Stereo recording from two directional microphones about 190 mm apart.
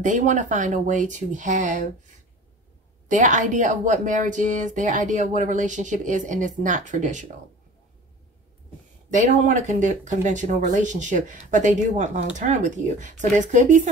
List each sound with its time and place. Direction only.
0.0 s speech: 40° right (ahead or behind)
3.1 s speech: 40° right (ahead or behind)
9.1 s speech: 40° right (ahead or behind)